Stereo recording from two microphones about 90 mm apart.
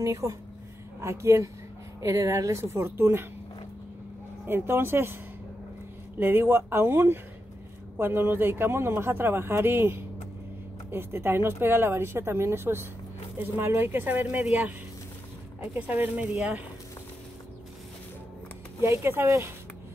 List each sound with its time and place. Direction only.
0.0 s a woman's voice: 35° right (ahead or behind)
4.5 s speech: 25° right (ahead or behind)
6.1 s speech: 25° right (ahead or behind)
15.6 s speech: 25° right (ahead or behind)
18.8 s speech: 25° right (ahead or behind)